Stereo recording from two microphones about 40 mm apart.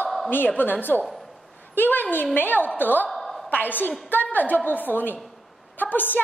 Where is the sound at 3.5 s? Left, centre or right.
Left.